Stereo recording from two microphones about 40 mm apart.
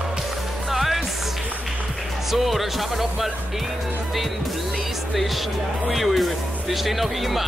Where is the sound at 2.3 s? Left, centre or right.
Centre.